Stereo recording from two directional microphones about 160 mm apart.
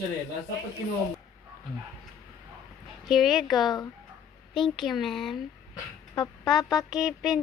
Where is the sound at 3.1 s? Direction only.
Centre (ahead or behind).